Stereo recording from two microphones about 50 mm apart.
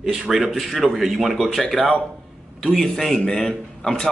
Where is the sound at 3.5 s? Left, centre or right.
Centre.